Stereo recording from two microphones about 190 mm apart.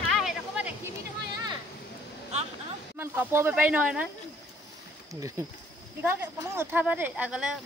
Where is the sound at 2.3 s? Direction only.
35° right (ahead or behind).